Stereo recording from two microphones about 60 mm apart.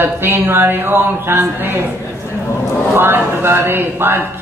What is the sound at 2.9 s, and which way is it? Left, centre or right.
A woman's voice, right.